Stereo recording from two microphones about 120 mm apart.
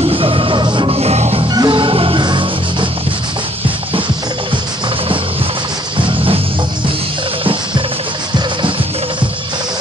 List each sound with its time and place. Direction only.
0.1 s music: 45° right (ahead or behind)
1.5 s music: 40° right (ahead or behind)
5.9 s music: 50° right (ahead or behind)